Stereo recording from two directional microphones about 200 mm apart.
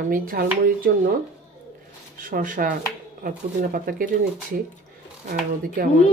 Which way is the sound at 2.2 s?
45° right (ahead or behind).